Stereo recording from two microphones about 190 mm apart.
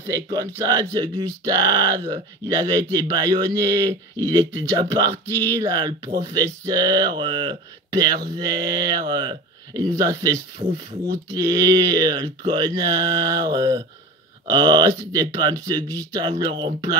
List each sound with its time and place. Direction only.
0.0 s speech: 20° right (ahead or behind)